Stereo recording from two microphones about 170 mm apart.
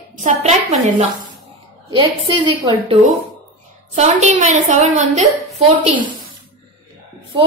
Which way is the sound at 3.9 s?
40° right (ahead or behind).